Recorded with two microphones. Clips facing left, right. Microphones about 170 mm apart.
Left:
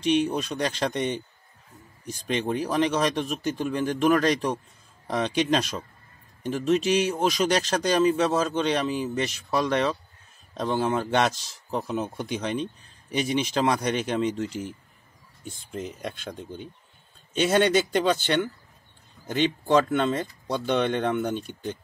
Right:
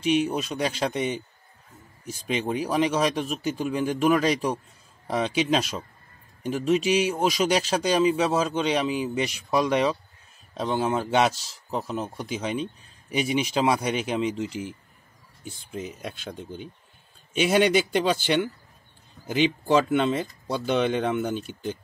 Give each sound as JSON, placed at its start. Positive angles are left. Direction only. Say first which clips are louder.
{"t": 0.0, "sound": "a man's voice", "louder": "even", "side_deg": -10}